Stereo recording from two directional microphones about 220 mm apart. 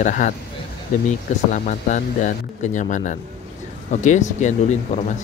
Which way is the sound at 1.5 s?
35° left (ahead or behind).